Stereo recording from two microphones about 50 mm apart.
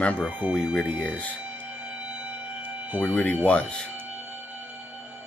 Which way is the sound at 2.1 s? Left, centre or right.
Right.